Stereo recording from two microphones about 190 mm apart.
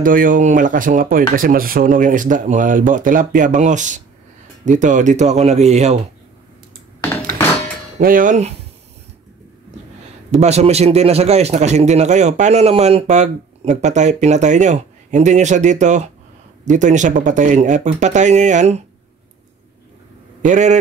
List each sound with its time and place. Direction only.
0.0 s a man's voice: 45° right (ahead or behind)
7.0 s dishes: 10° left (ahead or behind)
8.0 s speech: 45° right (ahead or behind)
10.3 s a man's voice: 35° right (ahead or behind)
20.4 s a man's voice: 40° right (ahead or behind)